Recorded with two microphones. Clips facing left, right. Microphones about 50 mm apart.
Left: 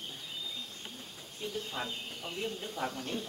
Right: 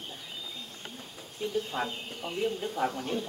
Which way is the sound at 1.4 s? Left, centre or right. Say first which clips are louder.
Right 6 dB; centre.